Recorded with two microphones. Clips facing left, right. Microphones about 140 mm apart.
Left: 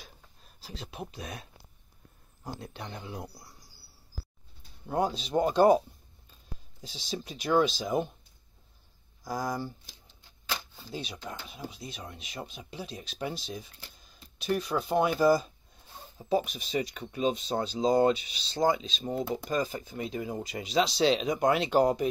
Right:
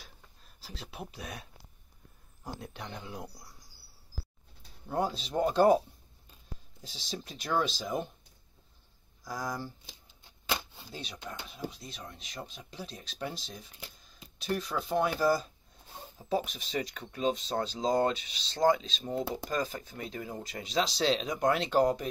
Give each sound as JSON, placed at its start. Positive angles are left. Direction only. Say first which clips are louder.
{"t": 0.6, "sound": "speech", "louder": "left 3 dB", "side_deg": -5}
{"t": 2.8, "sound": "speech", "louder": "left 2 dB", "side_deg": 10}
{"t": 5.0, "sound": "speech", "louder": "left 3 dB", "side_deg": 0}
{"t": 6.8, "sound": "speech", "louder": "left 4 dB", "side_deg": 0}
{"t": 9.2, "sound": "speech", "louder": "left 4 dB", "side_deg": 25}
{"t": 10.9, "sound": "speech", "louder": "left 4 dB", "side_deg": 5}